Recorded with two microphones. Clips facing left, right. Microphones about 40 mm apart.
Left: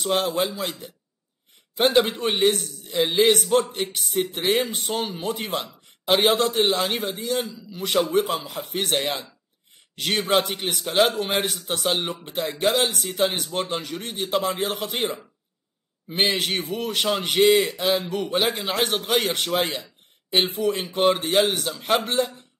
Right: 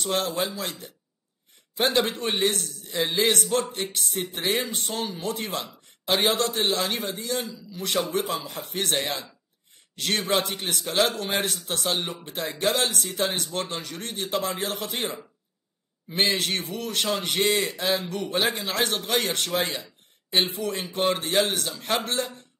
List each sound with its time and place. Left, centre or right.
0.0 s a man's voice: centre
2.0 s a man's voice: centre
12.6 s a man's voice: centre
20.8 s speech: centre